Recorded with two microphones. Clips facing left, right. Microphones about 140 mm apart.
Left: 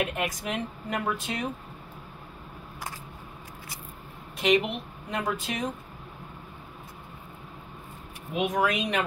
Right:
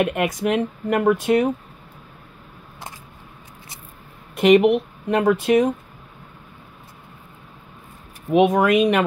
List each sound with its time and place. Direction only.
0.0 s speech: 65° right (ahead or behind)
4.4 s speech: 60° right (ahead or behind)
8.3 s speech: 70° right (ahead or behind)